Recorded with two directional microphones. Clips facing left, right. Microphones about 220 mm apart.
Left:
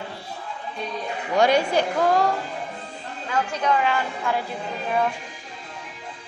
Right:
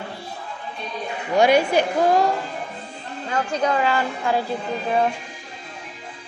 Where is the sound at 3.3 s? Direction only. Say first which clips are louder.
Right 1 dB; 35° right (ahead or behind).